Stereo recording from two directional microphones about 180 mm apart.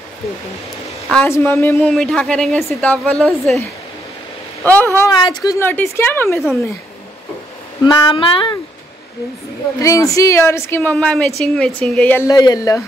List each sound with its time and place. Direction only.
1.1 s a woman's voice: 10° left (ahead or behind)
1.9 s a woman's voice: 5° left (ahead or behind)
4.6 s a woman's voice: 10° left (ahead or behind)
5.1 s speech: 25° left (ahead or behind)
5.7 s a woman's voice: 10° left (ahead or behind)
7.8 s speech: 25° left (ahead or behind)
9.8 s a woman's voice: 20° left (ahead or behind)
12.3 s speech: 20° left (ahead or behind)